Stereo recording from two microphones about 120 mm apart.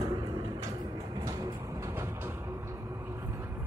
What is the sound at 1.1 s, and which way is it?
Vehicle, 30° right (ahead or behind).